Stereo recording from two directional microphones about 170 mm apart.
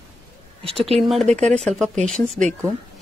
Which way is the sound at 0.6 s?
35° right (ahead or behind).